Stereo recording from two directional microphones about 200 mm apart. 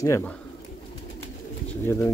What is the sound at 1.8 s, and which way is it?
Speech, 10° left (ahead or behind).